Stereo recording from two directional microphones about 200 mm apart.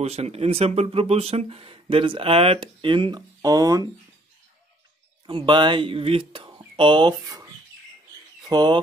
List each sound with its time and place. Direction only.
0.0 s speech: 30° right (ahead or behind)
5.2 s speech: 25° right (ahead or behind)